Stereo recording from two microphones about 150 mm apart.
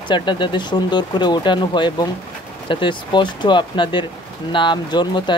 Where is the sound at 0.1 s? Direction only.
30° left (ahead or behind).